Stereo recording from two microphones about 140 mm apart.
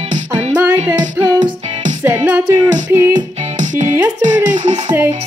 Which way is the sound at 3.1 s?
65° right (ahead or behind).